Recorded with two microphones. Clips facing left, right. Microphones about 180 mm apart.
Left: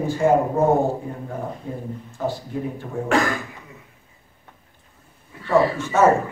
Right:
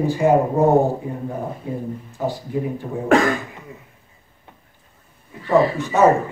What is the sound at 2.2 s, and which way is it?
Speech, 10° right (ahead or behind).